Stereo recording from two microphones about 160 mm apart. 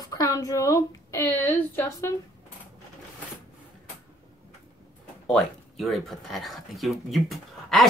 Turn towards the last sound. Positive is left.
turn(degrees=0)  # may be behind; listen again after turning